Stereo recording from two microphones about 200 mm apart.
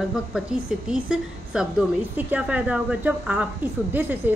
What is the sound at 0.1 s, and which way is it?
A woman's voice, centre (ahead or behind).